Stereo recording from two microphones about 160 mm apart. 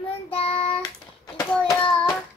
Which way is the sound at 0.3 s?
35° left (ahead or behind).